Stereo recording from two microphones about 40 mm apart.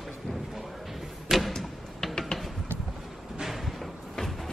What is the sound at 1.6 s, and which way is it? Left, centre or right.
Music, centre.